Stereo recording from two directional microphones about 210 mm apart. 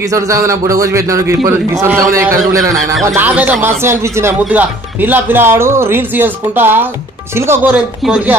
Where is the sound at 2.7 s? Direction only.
Centre (ahead or behind).